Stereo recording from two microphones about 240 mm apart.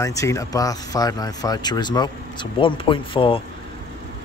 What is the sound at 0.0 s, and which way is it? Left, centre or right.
Speech, centre.